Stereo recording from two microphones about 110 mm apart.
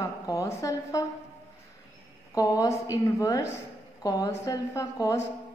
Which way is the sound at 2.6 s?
30° left (ahead or behind).